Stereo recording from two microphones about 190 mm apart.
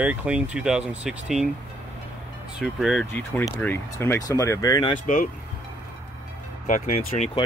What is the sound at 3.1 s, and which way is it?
Speech, 10° left (ahead or behind).